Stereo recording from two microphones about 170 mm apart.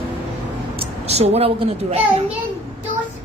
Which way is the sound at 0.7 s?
40° right (ahead or behind).